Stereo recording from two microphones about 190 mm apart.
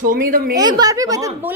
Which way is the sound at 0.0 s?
45° right (ahead or behind).